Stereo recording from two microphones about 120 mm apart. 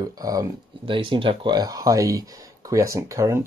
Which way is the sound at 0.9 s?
45° right (ahead or behind).